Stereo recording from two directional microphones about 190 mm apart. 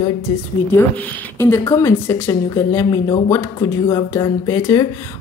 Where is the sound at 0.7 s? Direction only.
10° left (ahead or behind).